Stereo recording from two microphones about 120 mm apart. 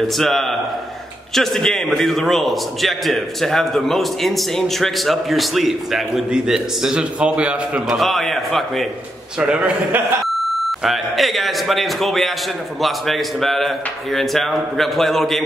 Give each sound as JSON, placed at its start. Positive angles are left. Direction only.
{"t": 0.2, "sound": "a man's voice", "side_deg": 0}
{"t": 9.4, "sound": "a man's voice", "side_deg": -10}